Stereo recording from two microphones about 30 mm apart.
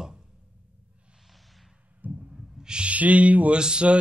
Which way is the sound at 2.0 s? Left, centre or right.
Right.